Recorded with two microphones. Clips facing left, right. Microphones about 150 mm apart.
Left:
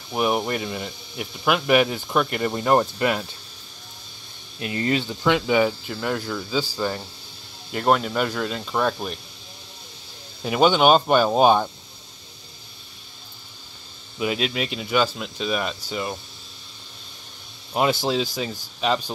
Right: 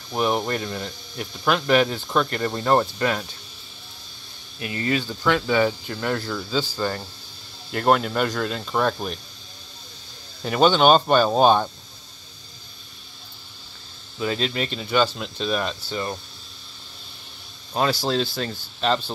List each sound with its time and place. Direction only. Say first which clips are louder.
0.1 s speech: even; 5° left (ahead or behind)
4.6 s speech: left 1 dB; 25° left (ahead or behind)
5.7 s speech: right 1 dB; 5° left (ahead or behind)
10.4 s speech: even; 10° left (ahead or behind)
14.1 s speech: even; 10° left (ahead or behind)
18.0 s speech: even; 15° left (ahead or behind)